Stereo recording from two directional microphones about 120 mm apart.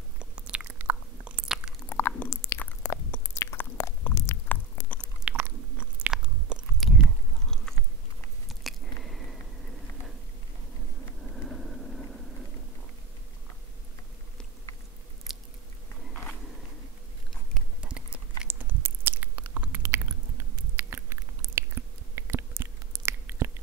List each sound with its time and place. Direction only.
0.2 s biting: 10° right (ahead or behind)
1.9 s chewing: 20° left (ahead or behind)
3.1 s biting: 20° left (ahead or behind)
5.3 s biting: 10° right (ahead or behind)
5.8 s chewing: 10° right (ahead or behind)
7.4 s biting: 5° left (ahead or behind)
8.5 s squish: centre (ahead or behind)
11.3 s vehicle: 5° left (ahead or behind)
17.9 s chewing: 10° right (ahead or behind)
19.8 s biting: 20° right (ahead or behind)
22.1 s chewing: 20° right (ahead or behind)